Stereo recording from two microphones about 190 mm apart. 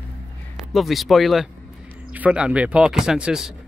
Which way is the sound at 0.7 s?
Centre (ahead or behind).